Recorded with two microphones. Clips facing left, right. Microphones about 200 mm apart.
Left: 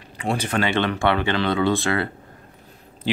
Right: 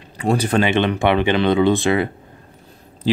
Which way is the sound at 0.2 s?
35° right (ahead or behind).